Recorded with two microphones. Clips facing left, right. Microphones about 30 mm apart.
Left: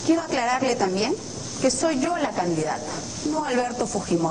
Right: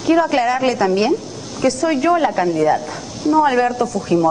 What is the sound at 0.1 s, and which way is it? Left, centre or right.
Speech, right.